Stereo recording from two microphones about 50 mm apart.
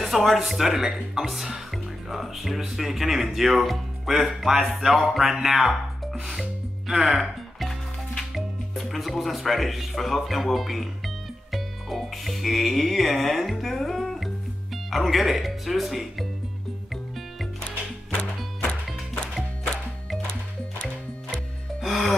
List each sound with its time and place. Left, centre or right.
0.0 s speech: centre
6.9 s music: centre
8.2 s speech: centre
18.1 s music: left
21.8 s music: centre